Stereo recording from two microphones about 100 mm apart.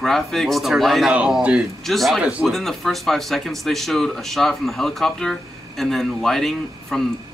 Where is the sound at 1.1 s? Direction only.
10° right (ahead or behind).